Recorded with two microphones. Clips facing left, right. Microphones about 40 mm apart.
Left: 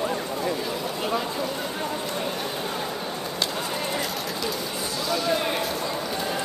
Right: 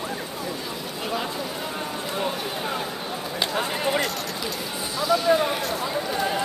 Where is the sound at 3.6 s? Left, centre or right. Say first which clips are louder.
Right 4 dB; right.